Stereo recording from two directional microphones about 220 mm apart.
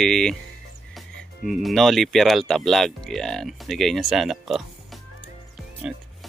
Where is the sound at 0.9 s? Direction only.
Centre (ahead or behind).